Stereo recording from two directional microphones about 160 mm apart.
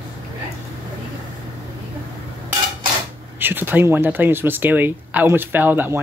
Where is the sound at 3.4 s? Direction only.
10° right (ahead or behind).